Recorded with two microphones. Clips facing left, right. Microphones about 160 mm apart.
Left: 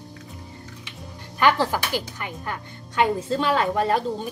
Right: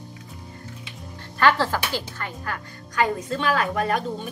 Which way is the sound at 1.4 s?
15° left (ahead or behind).